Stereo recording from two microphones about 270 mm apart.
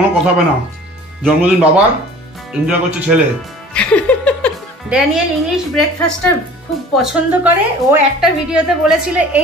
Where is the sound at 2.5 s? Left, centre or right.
Centre.